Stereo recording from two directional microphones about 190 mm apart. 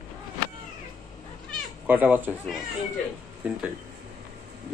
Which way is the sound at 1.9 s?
10° right (ahead or behind).